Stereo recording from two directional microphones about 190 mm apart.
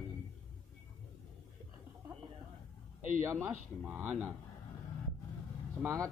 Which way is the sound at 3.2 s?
10° right (ahead or behind).